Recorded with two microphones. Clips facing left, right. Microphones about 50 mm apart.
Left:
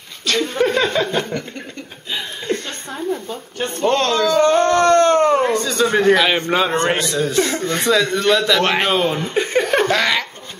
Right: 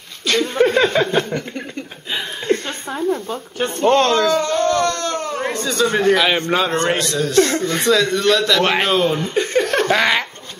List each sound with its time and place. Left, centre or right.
0.3 s speech: centre
2.1 s a sound: centre
3.9 s speech: right
4.4 s a sound: left
5.4 s a man's voice: centre
9.8 s speech: centre